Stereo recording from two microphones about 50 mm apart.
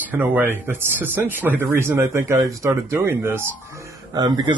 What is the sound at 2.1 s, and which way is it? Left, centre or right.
Speech, right.